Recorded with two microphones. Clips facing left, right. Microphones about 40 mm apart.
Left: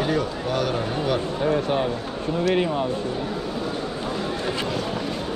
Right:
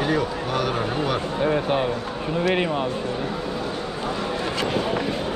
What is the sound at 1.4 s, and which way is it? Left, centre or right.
Speech, centre.